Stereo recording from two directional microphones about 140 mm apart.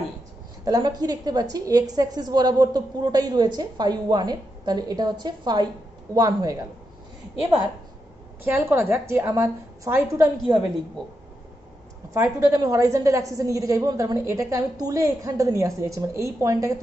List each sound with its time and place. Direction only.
0.7 s a woman's voice: 30° right (ahead or behind)
8.5 s a woman's voice: 15° right (ahead or behind)
12.1 s a woman's voice: 20° right (ahead or behind)